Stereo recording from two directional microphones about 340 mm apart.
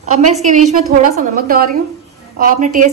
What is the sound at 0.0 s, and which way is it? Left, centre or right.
A woman's voice, centre.